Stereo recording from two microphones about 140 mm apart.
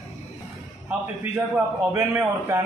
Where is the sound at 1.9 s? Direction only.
15° right (ahead or behind).